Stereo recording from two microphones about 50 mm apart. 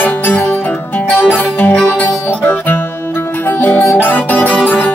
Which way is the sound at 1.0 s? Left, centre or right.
Left.